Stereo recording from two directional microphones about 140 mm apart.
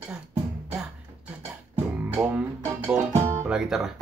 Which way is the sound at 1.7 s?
15° right (ahead or behind).